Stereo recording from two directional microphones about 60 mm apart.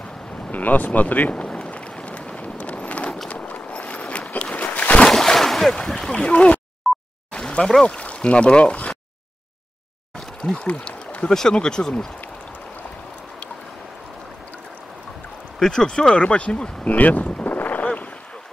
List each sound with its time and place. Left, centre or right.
0.5 s speech: left
1.3 s a sound: centre
3.3 s boat: left
5.1 s a sound: centre
5.8 s speech: centre
6.8 s plop: centre
7.3 s a sound: centre
7.9 s speech: left
10.4 s speech: centre
15.6 s speech: centre
16.9 s boat: left